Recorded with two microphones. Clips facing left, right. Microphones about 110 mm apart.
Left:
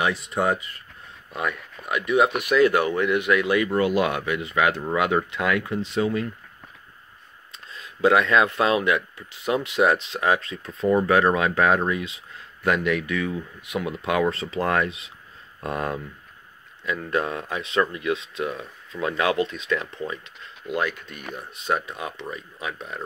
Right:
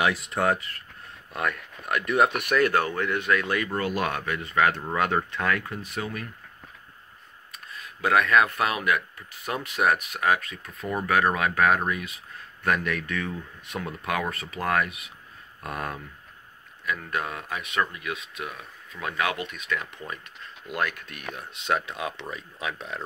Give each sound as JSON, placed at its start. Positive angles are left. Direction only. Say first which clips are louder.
{"t": 0.0, "sound": "speech", "louder": "left 1 dB", "side_deg": 0}
{"t": 2.5, "sound": "speech", "louder": "left 4 dB", "side_deg": 15}
{"t": 7.5, "sound": "speech", "louder": "left 1 dB", "side_deg": 25}
{"t": 20.6, "sound": "speech", "louder": "left 3 dB", "side_deg": 5}